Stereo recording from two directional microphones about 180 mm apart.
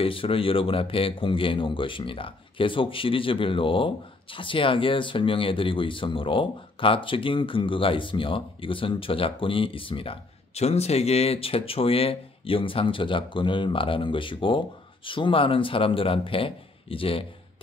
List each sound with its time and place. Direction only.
0.0 s speech: 30° left (ahead or behind)